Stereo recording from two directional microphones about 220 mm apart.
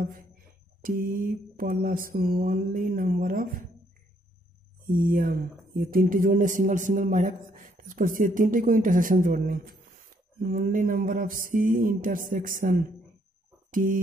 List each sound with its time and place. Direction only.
0.8 s speech: 40° right (ahead or behind)
4.9 s speech: 40° right (ahead or behind)
13.7 s a sound: 40° right (ahead or behind)